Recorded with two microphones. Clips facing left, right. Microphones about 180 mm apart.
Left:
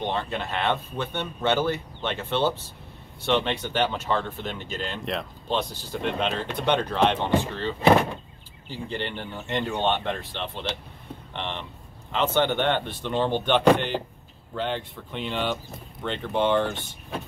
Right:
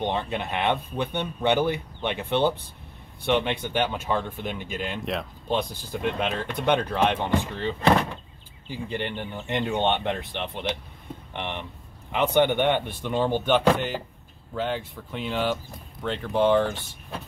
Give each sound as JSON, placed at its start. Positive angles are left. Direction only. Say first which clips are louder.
{"t": 0.0, "sound": "speech", "louder": "right 1 dB", "side_deg": -15}
{"t": 8.8, "sound": "speech", "louder": "right 1 dB", "side_deg": -15}